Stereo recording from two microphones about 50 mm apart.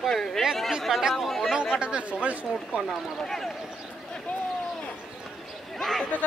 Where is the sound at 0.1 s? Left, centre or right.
Centre.